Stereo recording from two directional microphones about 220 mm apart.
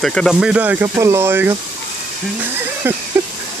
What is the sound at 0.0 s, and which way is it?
Speech, centre (ahead or behind).